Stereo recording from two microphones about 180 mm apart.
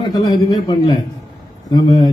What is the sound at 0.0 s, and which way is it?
A man's voice, 25° left (ahead or behind).